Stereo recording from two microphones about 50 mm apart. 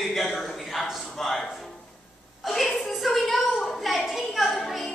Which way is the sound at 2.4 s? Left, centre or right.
Centre.